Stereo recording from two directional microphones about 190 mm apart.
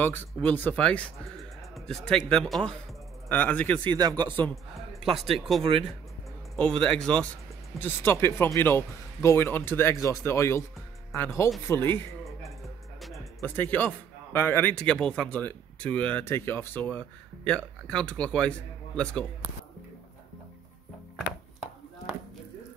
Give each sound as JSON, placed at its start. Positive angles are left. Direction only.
{"t": 0.0, "sound": "a man's voice", "side_deg": 10}
{"t": 3.8, "sound": "speech", "side_deg": -20}
{"t": 5.6, "sound": "speech", "side_deg": -30}
{"t": 6.5, "sound": "a man's voice", "side_deg": 5}
{"t": 11.1, "sound": "speech", "side_deg": 0}
{"t": 11.6, "sound": "a man's voice", "side_deg": 10}
{"t": 13.0, "sound": "music", "side_deg": 0}
{"t": 13.4, "sound": "a man's voice", "side_deg": 10}
{"t": 21.3, "sound": "chopping", "side_deg": 0}